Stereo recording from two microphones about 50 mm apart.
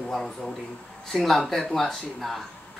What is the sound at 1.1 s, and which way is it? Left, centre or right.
Speech, centre.